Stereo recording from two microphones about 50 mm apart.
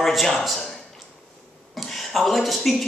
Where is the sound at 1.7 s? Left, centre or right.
Centre.